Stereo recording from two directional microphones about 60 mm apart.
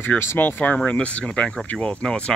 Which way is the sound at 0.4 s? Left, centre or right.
Left.